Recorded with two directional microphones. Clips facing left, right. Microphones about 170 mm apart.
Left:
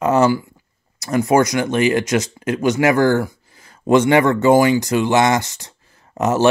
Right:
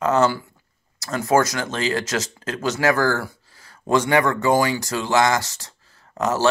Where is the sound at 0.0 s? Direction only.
15° left (ahead or behind).